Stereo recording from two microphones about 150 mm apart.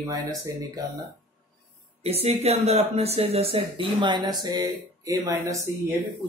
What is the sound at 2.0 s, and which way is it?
Speech, 40° right (ahead or behind).